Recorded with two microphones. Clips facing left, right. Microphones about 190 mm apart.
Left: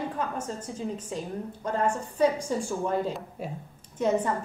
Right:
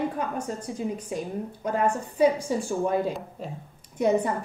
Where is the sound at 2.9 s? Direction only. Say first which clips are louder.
Right 2 dB; 10° right (ahead or behind).